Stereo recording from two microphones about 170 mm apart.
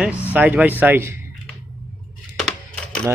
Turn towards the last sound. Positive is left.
turn(degrees=5)  # may be behind; listen again after turning